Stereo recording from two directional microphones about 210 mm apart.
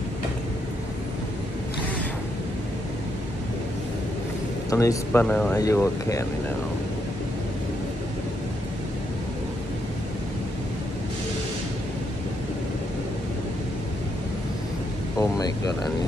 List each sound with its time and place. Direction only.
4.6 s speech: 15° left (ahead or behind)
15.1 s speech: 20° left (ahead or behind)